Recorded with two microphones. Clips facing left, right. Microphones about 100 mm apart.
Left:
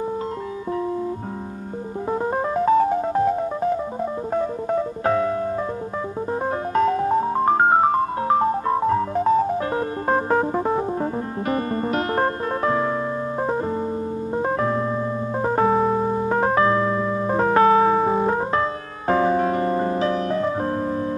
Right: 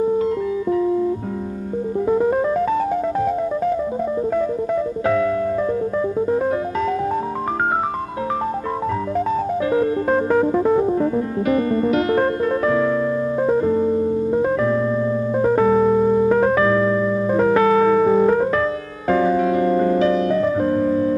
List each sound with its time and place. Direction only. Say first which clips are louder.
2.0 s music: right 5 dB; 30° left (ahead or behind)
5.0 s piano: right 2 dB; 30° left (ahead or behind)
9.7 s music: right 5 dB; 35° left (ahead or behind)
13.4 s keyboard: right 7 dB; 30° left (ahead or behind)
14.3 s music: right 1 dB; 35° left (ahead or behind)
15.4 s keyboard: right 3 dB; 35° left (ahead or behind)
19.0 s music: right 2 dB; 40° left (ahead or behind)